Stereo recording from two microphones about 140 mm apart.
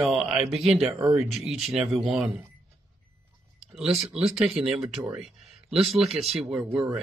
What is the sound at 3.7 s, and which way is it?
Speech, 5° right (ahead or behind).